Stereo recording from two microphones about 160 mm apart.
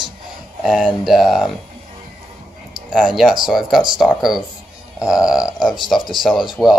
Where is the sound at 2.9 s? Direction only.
5° right (ahead or behind).